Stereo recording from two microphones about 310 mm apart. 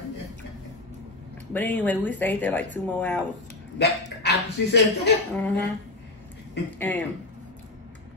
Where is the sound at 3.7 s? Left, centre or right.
Left.